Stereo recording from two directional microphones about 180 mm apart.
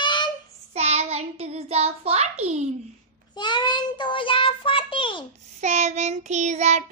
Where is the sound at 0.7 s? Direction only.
35° right (ahead or behind).